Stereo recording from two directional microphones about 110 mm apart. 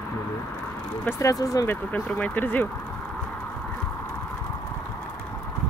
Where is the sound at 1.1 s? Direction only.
30° left (ahead or behind).